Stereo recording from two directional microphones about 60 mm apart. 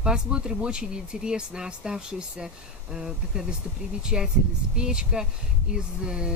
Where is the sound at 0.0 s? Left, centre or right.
Centre.